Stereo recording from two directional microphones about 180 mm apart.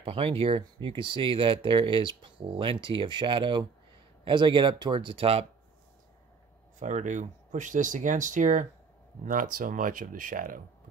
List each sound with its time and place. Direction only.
0.0 s speech: 30° right (ahead or behind)
6.8 s speech: 40° right (ahead or behind)